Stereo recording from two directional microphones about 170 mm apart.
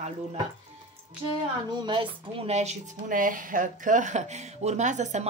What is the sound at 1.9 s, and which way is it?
A woman's voice, 30° right (ahead or behind).